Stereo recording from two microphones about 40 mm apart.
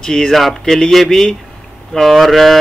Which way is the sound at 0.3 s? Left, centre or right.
Centre.